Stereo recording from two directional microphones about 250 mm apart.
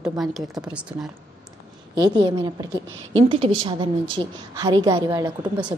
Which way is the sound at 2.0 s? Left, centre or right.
Centre.